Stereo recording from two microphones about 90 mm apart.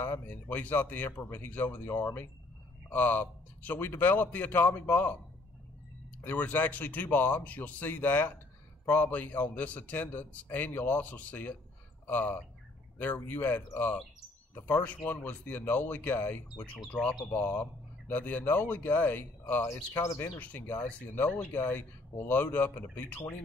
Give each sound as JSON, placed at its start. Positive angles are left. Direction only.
{"t": 0.0, "sound": "a man's voice", "side_deg": 20}
{"t": 6.2, "sound": "a man's voice", "side_deg": 20}